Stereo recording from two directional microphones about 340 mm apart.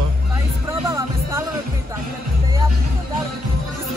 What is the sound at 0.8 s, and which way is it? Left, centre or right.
Music, centre.